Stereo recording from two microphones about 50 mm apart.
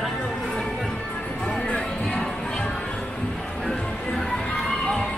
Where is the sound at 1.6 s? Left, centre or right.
Centre.